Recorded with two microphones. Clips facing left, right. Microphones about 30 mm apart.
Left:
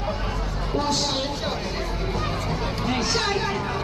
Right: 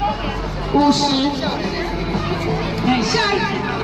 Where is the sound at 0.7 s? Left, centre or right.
Right.